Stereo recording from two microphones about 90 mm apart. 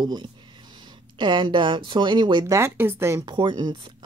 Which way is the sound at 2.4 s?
30° right (ahead or behind).